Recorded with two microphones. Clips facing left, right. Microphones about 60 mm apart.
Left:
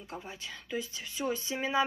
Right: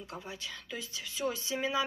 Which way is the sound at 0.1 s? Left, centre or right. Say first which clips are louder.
Left 2 dB; left.